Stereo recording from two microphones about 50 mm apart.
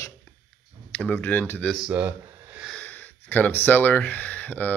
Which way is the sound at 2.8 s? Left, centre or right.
Left.